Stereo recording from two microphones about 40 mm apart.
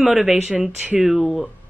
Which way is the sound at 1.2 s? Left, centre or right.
Centre.